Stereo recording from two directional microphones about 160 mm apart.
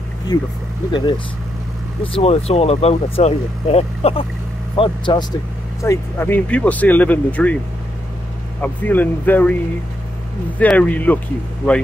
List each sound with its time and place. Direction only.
0.3 s speech: 25° left (ahead or behind)
5.8 s speech: 15° left (ahead or behind)
8.5 s speech: 10° left (ahead or behind)
10.6 s speech: 10° left (ahead or behind)